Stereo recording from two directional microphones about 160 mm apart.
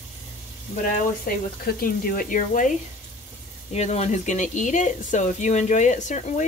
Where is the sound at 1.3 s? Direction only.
70° left (ahead or behind).